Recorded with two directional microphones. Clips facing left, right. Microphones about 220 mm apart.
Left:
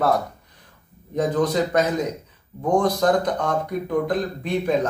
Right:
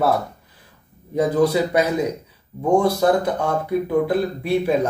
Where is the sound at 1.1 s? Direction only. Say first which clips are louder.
Right 3 dB; 10° right (ahead or behind).